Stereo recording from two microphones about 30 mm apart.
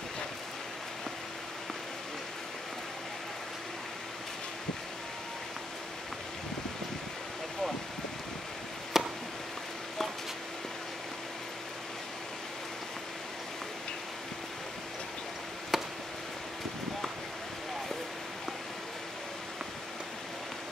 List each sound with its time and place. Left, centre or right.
9.0 s chop: centre
15.7 s chop: centre